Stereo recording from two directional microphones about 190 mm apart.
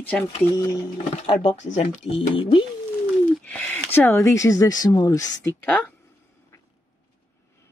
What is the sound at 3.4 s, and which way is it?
Speech, 5° left (ahead or behind).